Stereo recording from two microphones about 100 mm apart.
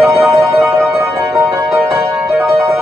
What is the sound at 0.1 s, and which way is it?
Music, 30° right (ahead or behind).